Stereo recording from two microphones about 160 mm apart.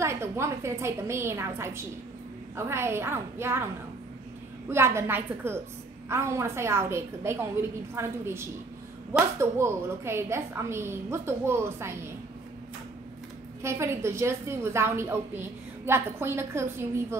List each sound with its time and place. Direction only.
0.0 s a woman's voice: 15° right (ahead or behind)
4.6 s a woman's voice: 15° right (ahead or behind)
13.6 s a woman's voice: 15° right (ahead or behind)